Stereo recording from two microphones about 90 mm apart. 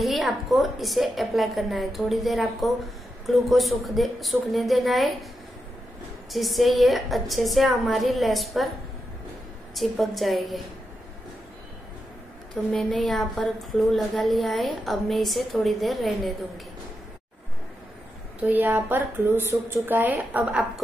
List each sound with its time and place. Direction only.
0.0 s a woman's voice: centre (ahead or behind)
6.3 s a woman's voice: centre (ahead or behind)
9.8 s a woman's voice: centre (ahead or behind)
12.7 s a woman's voice: centre (ahead or behind)
18.4 s speech: 20° right (ahead or behind)